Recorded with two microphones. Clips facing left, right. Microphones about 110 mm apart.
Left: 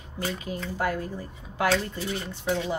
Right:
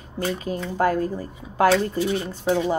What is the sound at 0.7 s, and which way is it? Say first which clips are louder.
Speech: right 8 dB; 40° right (ahead or behind).